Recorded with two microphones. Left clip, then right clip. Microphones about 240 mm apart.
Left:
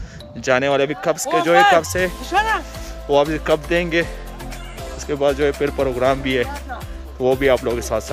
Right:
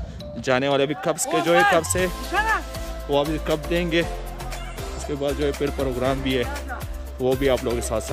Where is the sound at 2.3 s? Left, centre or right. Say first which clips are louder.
Left 4 dB; left.